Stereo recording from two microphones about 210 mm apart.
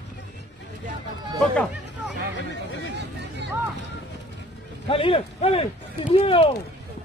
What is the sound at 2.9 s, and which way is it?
Vehicle, 55° right (ahead or behind).